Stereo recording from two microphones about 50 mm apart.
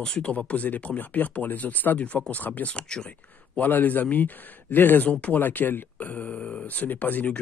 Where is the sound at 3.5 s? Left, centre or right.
Left.